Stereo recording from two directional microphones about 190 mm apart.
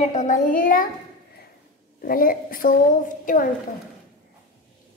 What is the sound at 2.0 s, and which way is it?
A woman's voice, 50° left (ahead or behind).